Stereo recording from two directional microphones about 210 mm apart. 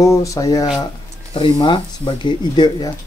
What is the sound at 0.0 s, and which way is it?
Speech, 15° left (ahead or behind).